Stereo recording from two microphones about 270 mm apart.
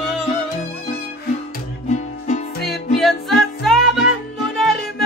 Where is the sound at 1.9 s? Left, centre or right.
Left.